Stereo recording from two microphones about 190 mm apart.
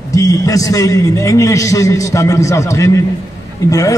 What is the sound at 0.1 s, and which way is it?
A man's voice, 20° left (ahead or behind).